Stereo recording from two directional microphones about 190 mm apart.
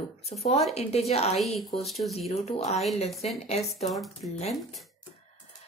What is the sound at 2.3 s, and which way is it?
Speech, 35° left (ahead or behind).